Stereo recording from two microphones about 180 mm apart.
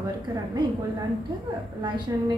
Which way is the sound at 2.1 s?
20° right (ahead or behind).